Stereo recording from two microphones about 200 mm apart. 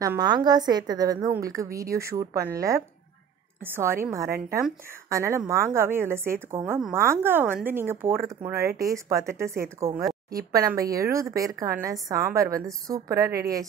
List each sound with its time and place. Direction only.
0.0 s a woman's voice: 20° right (ahead or behind)